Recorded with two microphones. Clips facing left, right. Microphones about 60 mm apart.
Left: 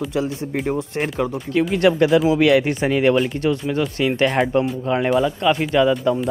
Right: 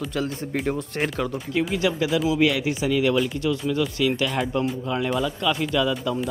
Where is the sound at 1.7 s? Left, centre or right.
Left.